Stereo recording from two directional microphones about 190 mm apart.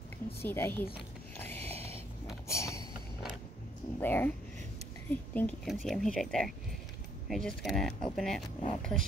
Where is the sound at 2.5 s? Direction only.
15° left (ahead or behind).